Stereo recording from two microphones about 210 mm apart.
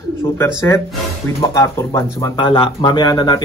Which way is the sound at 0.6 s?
15° left (ahead or behind).